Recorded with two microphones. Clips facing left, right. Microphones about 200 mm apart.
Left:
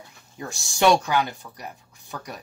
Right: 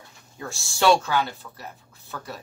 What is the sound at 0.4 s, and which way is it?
A woman's voice, 15° left (ahead or behind).